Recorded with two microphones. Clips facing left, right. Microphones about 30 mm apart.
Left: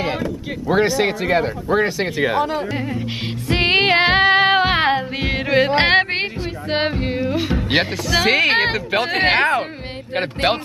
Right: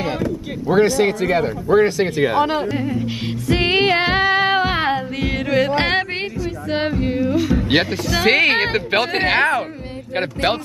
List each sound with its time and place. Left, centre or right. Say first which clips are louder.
0.7 s speech: right 2 dB; centre
3.0 s music: right 2 dB; left
8.2 s speech: right 1 dB; centre
8.9 s speech: right 2 dB; right
9.3 s speech: even; centre